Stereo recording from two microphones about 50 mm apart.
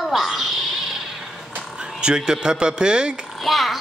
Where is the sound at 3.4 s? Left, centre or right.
Centre.